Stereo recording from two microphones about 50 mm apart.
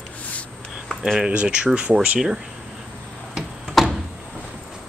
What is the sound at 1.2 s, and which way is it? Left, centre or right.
Speech, centre.